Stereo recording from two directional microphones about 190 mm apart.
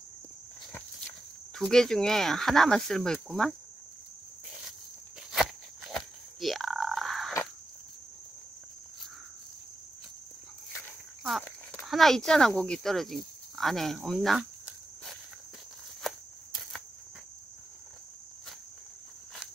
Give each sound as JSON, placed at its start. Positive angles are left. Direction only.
{"t": 1.5, "sound": "speech", "side_deg": 5}
{"t": 5.3, "sound": "a sound", "side_deg": 0}
{"t": 11.8, "sound": "speech", "side_deg": 0}